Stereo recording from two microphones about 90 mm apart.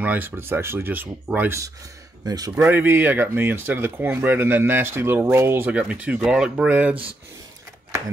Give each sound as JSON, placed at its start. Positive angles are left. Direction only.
{"t": 0.0, "sound": "speech", "side_deg": -20}
{"t": 2.2, "sound": "speech", "side_deg": -45}
{"t": 2.5, "sound": "speech", "side_deg": -20}
{"t": 5.7, "sound": "speech", "side_deg": -15}